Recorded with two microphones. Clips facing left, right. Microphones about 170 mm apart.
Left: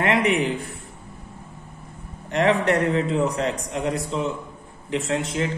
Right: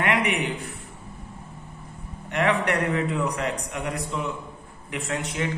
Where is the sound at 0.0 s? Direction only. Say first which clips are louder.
Left 4 dB; 30° left (ahead or behind).